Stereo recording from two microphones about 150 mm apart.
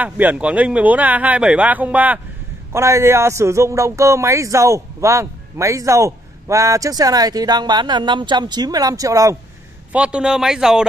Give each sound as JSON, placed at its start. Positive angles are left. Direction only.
{"t": 0.0, "sound": "a man's voice", "side_deg": -10}
{"t": 9.9, "sound": "speech", "side_deg": -5}